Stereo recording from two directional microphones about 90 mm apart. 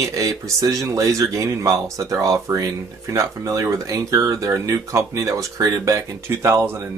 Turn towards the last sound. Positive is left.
turn(degrees=-30)  # may be behind; listen again after turning